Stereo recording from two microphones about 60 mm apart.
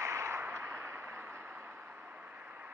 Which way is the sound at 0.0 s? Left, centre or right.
Right.